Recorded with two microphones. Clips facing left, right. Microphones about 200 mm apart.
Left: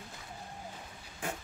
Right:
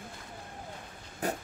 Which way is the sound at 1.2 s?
40° right (ahead or behind).